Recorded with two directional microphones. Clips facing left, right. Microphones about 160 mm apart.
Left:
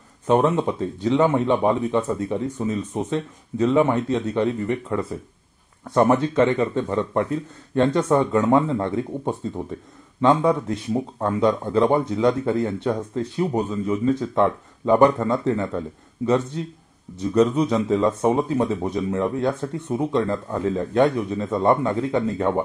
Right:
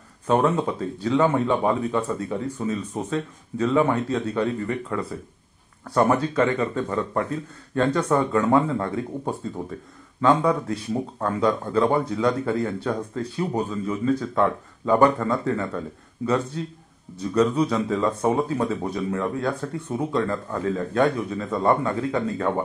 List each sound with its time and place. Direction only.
0.7 s speech: 20° left (ahead or behind)